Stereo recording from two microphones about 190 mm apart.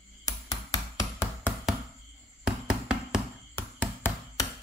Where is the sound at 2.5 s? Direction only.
5° right (ahead or behind).